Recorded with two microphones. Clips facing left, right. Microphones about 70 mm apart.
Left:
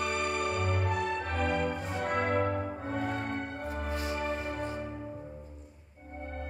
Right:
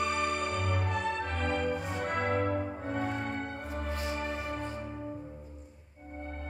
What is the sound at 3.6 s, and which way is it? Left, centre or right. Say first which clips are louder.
Music: left 1 dB; left.